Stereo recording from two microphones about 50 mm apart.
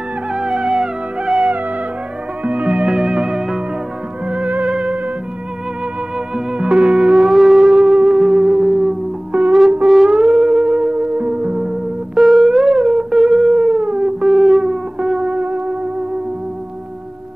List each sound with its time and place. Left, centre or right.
0.3 s music: centre
2.4 s music: right
2.9 s theremin: centre
4.3 s music: right
6.1 s music: centre
9.3 s music: centre
11.6 s music: centre
14.2 s music: centre
15.3 s music: right